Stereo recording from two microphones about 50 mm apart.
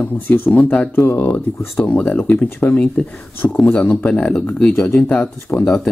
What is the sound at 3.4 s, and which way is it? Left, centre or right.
Speech, left.